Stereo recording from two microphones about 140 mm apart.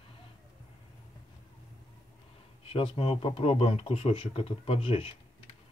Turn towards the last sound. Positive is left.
turn(degrees=40)  # may be behind; listen again after turning